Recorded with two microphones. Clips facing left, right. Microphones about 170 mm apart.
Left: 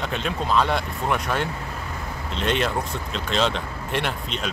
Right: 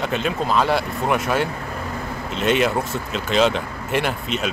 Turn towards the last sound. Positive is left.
turn(degrees=-5)  # may be behind; listen again after turning